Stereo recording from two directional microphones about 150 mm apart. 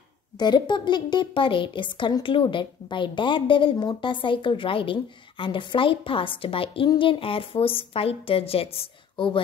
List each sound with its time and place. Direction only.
0.4 s a woman's voice: 30° left (ahead or behind)